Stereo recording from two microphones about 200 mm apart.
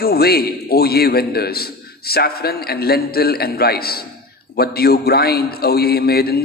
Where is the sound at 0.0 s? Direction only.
50° left (ahead or behind).